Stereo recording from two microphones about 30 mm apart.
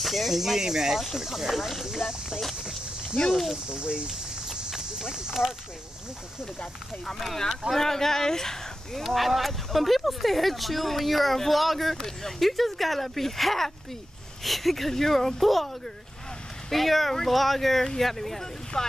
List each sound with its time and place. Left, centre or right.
0.0 s speech: centre
0.3 s speech: centre
3.7 s speech: right
4.6 s a sound: centre
7.7 s speech: centre
9.0 s speech: centre
12.0 s speech: centre
16.7 s speech: centre